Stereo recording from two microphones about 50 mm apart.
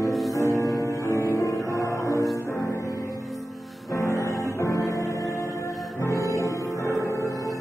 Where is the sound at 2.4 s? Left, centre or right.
Left.